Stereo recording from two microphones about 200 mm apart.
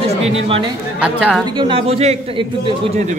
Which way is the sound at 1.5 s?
25° right (ahead or behind).